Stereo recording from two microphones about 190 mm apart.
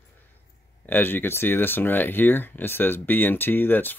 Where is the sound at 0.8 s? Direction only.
10° left (ahead or behind).